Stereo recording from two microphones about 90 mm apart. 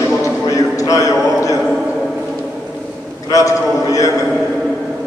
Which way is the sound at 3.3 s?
40° left (ahead or behind).